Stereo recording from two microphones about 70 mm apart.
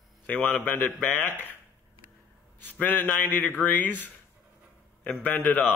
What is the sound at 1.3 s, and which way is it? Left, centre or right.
Speech, left.